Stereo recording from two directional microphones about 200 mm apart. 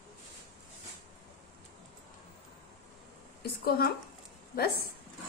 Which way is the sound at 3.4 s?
50° left (ahead or behind).